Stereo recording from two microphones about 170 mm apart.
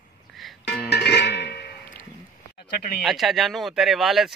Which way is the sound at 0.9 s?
85° left.